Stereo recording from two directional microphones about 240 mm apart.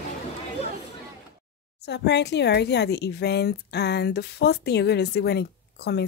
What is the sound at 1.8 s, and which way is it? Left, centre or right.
Speech, left.